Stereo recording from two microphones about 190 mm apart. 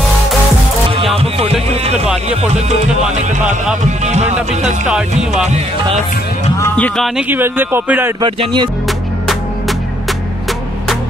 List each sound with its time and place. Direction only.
1.1 s music: 30° right (ahead or behind)
4.0 s music: 35° right (ahead or behind)
6.6 s speech: 10° left (ahead or behind)
7.2 s speech: 10° right (ahead or behind)
8.2 s speech: 25° right (ahead or behind)
8.8 s music: centre (ahead or behind)